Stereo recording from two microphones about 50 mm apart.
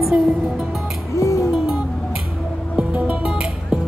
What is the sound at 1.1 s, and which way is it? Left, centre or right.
Music, left.